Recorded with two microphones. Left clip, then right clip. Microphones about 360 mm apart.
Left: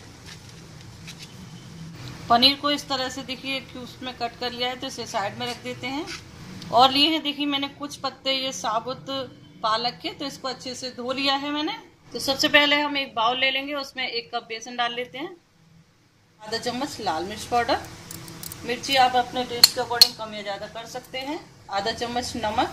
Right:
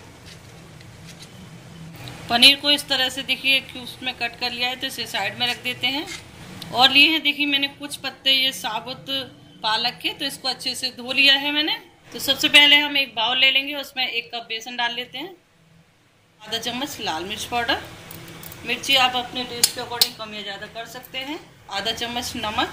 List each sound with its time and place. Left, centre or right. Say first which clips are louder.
2.2 s a woman's voice: right 4 dB; centre
16.4 s a woman's voice: right 1 dB; centre
18.9 s a woman's voice: even; centre